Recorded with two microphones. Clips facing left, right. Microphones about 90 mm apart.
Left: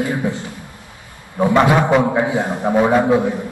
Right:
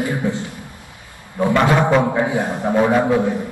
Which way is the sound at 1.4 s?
20° left (ahead or behind).